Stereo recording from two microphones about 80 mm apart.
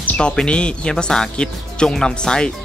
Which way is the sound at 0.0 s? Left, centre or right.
Left.